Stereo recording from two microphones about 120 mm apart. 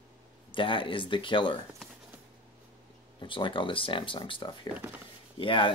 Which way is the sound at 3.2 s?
45° left (ahead or behind).